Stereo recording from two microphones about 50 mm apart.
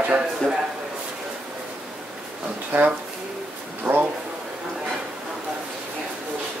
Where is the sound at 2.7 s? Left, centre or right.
Right.